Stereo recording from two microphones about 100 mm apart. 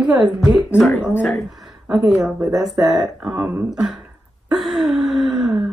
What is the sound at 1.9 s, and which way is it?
Speech, 5° right (ahead or behind).